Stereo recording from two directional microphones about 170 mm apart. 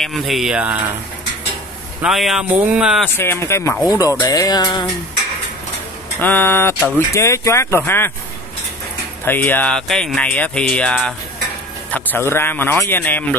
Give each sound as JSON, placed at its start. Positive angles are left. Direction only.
{"t": 0.0, "sound": "speech", "side_deg": 0}
{"t": 2.0, "sound": "speech", "side_deg": 0}
{"t": 3.2, "sound": "speech", "side_deg": 15}
{"t": 6.1, "sound": "speech", "side_deg": 15}
{"t": 9.2, "sound": "speech", "side_deg": 10}